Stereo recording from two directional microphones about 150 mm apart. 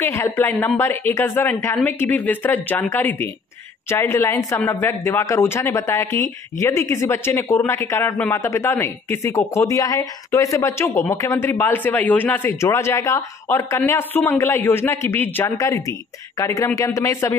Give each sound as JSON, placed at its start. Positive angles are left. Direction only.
{"t": 0.0, "sound": "speech", "side_deg": 15}